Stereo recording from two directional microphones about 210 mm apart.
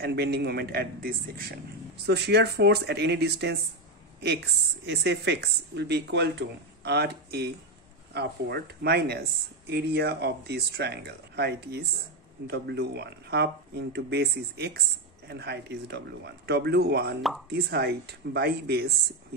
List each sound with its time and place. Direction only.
0.0 s speech: 50° right (ahead or behind)